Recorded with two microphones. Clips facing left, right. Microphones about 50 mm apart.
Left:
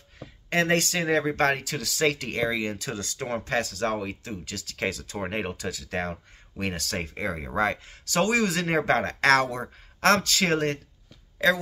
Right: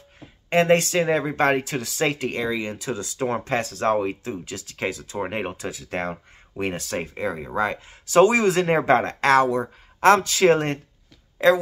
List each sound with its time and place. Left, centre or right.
0.5 s speech: right
2.3 s speech: centre
3.3 s speech: right; by 5.5 s centre
5.5 s speech: right
7.0 s speech: centre
8.0 s speech: centre
10.5 s speech: right